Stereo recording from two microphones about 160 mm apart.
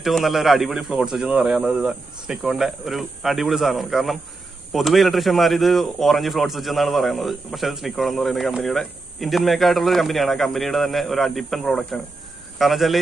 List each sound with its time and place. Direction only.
0.0 s speech: centre (ahead or behind)